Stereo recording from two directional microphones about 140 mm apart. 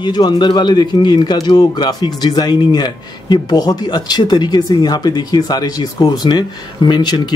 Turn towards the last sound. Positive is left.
turn(degrees=30)  # may be behind; listen again after turning